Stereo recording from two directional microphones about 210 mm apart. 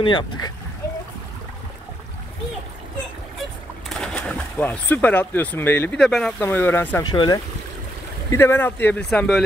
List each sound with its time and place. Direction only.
0.0 s speech: 25° left (ahead or behind)
3.9 s speech: 5° left (ahead or behind)